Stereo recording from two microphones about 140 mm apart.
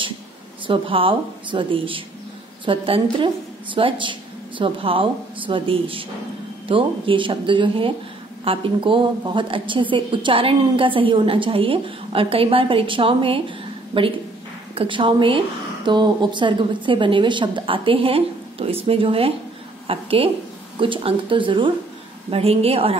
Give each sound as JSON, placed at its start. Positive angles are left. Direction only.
{"t": 0.7, "sound": "a woman's voice", "side_deg": -40}